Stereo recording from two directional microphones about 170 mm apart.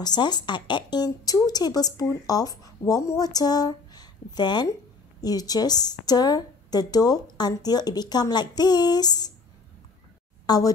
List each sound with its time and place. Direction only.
0.0 s speech: 25° left (ahead or behind)
10.4 s a woman's voice: 25° left (ahead or behind)